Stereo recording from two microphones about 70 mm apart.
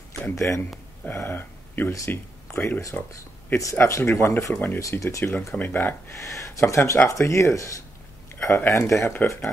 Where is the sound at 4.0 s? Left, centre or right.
Left.